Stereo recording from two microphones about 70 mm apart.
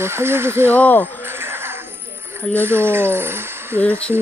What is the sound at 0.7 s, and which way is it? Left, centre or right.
Speech, left.